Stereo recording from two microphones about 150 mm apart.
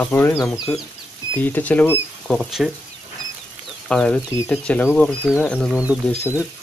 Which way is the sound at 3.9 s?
5° left (ahead or behind).